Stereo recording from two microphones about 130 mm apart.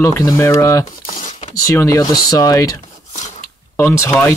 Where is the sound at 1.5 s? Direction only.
25° left (ahead or behind).